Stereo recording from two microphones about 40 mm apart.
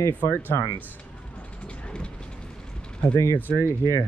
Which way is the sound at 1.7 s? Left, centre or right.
Left.